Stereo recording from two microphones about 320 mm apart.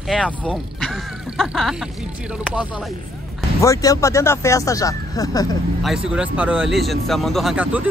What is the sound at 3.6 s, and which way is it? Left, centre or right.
Speech, centre.